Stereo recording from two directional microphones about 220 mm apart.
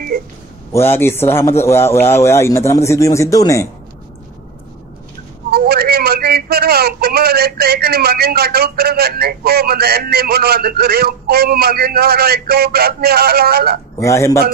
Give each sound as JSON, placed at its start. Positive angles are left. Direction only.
{"t": 0.7, "sound": "speech", "side_deg": 10}
{"t": 5.5, "sound": "a man's voice", "side_deg": -45}
{"t": 13.9, "sound": "speech", "side_deg": 15}